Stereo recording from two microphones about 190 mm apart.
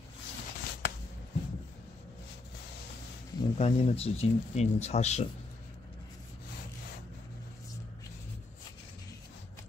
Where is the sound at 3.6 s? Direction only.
30° left (ahead or behind).